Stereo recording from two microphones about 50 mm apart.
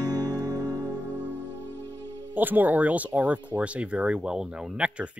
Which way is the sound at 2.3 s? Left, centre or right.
Right.